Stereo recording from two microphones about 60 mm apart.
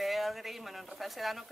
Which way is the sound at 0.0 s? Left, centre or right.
Centre.